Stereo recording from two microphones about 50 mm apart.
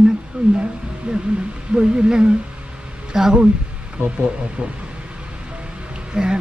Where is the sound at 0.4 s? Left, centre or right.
Centre.